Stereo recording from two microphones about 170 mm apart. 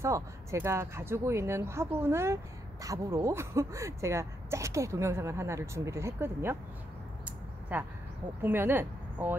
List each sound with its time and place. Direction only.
0.0 s speech: 15° right (ahead or behind)
7.7 s speech: 10° right (ahead or behind)